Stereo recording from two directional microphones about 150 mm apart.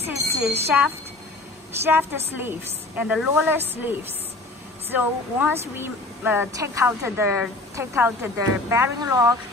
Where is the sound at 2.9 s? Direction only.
10° right (ahead or behind).